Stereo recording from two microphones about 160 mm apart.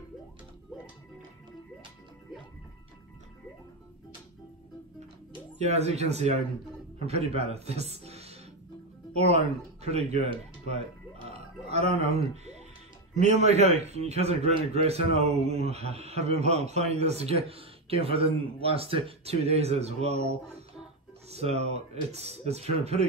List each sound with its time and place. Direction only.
5.3 s a man's voice: 40° right (ahead or behind)